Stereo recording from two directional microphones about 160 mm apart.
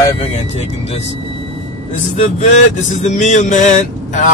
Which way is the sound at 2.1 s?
45° left (ahead or behind).